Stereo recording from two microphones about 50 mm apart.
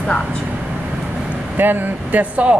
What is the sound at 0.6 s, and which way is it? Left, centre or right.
Vehicle, centre.